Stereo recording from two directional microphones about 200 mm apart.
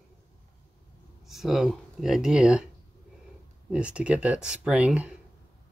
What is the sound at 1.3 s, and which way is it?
Speech, centre (ahead or behind).